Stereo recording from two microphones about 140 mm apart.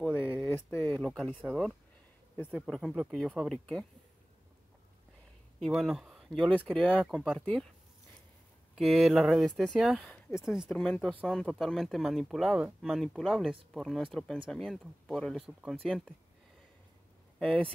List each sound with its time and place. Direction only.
0.0 s a sound: 15° left (ahead or behind)
1.4 s speech: 5° right (ahead or behind)
2.3 s speech: 10° left (ahead or behind)
5.7 s speech: 5° right (ahead or behind)
8.7 s speech: centre (ahead or behind)
17.4 s speech: 5° left (ahead or behind)